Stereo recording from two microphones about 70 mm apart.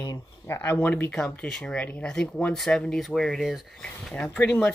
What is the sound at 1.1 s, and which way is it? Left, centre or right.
Speech, centre.